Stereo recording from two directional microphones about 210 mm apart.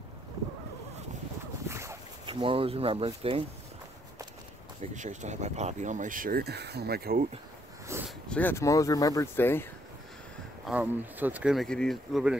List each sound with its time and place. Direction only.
1.7 s dog: 15° right (ahead or behind)
2.4 s speech: 25° right (ahead or behind)
4.9 s speech: 35° right (ahead or behind)
7.9 s a sound: 10° right (ahead or behind)
8.3 s speech: 10° left (ahead or behind)
10.6 s speech: 5° right (ahead or behind)